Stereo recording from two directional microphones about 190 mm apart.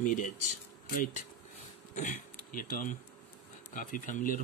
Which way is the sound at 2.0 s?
45° left (ahead or behind).